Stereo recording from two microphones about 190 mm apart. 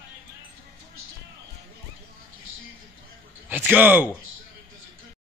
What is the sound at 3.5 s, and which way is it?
Speech, 10° right (ahead or behind).